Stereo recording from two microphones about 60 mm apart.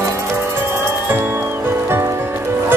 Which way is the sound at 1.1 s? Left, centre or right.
Right.